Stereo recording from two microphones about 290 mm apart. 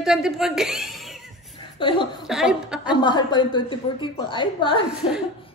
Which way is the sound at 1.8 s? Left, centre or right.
Centre.